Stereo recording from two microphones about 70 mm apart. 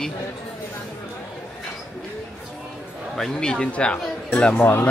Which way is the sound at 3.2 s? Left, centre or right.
Centre.